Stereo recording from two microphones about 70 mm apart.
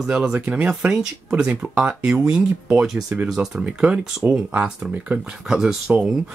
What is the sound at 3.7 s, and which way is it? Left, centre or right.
Speech, centre.